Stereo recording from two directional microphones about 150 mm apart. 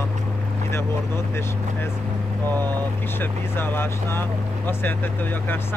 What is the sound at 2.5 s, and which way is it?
Speech, 25° right (ahead or behind).